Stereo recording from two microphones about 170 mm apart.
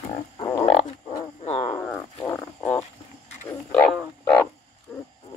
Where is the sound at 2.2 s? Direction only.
10° left (ahead or behind).